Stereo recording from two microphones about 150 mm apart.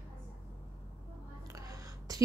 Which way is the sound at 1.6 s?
25° right (ahead or behind).